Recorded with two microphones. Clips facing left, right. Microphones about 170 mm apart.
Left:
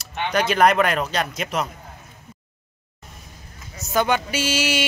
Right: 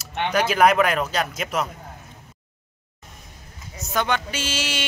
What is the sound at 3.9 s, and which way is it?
Music, 5° left (ahead or behind).